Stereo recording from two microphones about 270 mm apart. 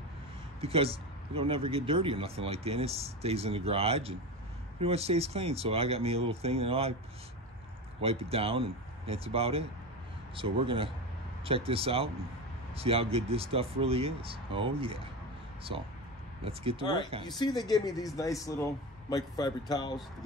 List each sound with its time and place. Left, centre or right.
0.6 s speech: right
8.0 s speech: right
16.4 s speech: right
17.4 s a man's voice: centre